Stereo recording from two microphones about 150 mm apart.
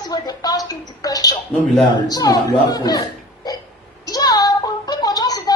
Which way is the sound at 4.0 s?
25° left (ahead or behind).